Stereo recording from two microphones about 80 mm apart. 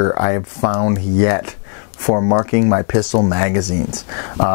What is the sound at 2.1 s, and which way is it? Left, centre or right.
Speech, left.